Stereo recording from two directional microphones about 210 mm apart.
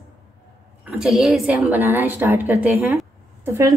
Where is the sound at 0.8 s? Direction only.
Centre (ahead or behind).